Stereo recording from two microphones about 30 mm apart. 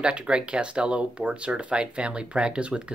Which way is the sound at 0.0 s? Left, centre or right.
Right.